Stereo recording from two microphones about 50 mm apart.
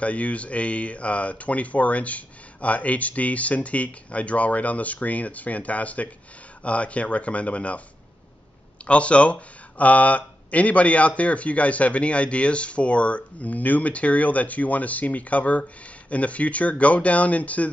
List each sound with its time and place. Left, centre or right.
0.0 s speech: left
8.8 s speech: left